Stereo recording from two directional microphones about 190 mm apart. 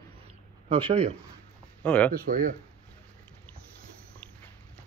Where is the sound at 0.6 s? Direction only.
30° right (ahead or behind).